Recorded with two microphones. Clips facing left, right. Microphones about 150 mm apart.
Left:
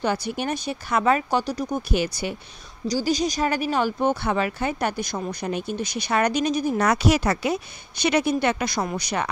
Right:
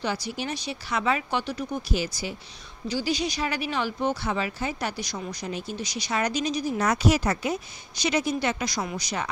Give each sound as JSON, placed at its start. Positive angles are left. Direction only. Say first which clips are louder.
{"t": 0.0, "sound": "speech", "louder": "left 5 dB", "side_deg": 55}
{"t": 1.8, "sound": "speech", "louder": "left 4 dB", "side_deg": 60}
{"t": 2.9, "sound": "speech", "louder": "left 4 dB", "side_deg": 40}